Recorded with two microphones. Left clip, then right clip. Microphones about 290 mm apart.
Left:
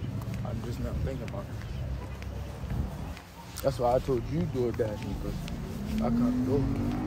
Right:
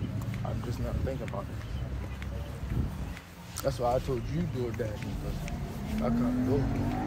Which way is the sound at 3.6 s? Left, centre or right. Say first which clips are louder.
Left 3 dB; centre.